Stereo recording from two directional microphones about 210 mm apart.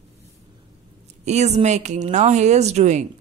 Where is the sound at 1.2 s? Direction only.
30° right (ahead or behind).